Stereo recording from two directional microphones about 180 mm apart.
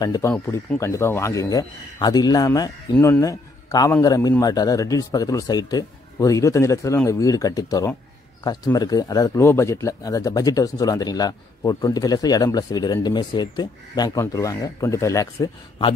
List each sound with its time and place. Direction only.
0.0 s speech: 20° left (ahead or behind)
0.3 s speech: 10° left (ahead or behind)